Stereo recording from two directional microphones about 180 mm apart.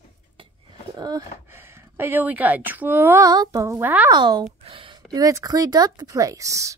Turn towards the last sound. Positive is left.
turn(degrees=-15)  # may be behind; listen again after turning